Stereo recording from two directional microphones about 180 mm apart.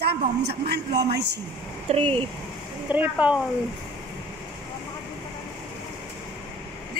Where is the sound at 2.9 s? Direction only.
10° right (ahead or behind).